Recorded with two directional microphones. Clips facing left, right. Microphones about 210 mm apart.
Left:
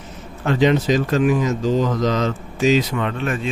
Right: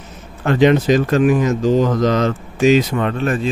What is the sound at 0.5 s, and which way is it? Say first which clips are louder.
Speech: right 4 dB; 60° right (ahead or behind).